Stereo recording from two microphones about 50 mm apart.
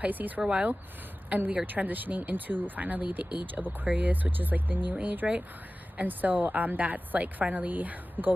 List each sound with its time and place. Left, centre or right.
0.0 s a woman's voice: right
0.5 s a woman's voice: right